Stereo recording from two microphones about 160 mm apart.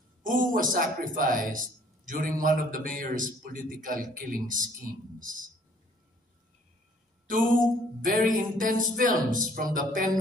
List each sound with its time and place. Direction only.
0.2 s a man's voice: 60° right (ahead or behind)
7.2 s a man's voice: 55° right (ahead or behind)